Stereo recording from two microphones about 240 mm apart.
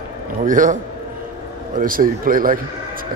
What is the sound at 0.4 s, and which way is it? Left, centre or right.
Speech, right.